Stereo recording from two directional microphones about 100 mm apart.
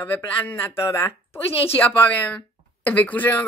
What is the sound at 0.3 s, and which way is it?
A woman's voice, 20° left (ahead or behind).